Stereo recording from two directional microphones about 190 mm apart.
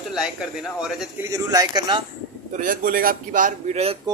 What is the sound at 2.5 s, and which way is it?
A man's voice, 45° right (ahead or behind).